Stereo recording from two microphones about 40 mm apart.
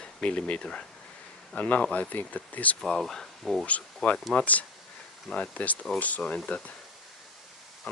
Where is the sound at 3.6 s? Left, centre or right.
Left.